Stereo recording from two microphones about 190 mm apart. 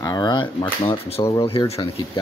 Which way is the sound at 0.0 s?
20° left (ahead or behind).